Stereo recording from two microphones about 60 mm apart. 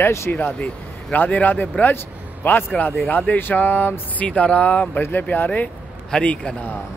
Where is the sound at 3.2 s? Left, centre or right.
Left.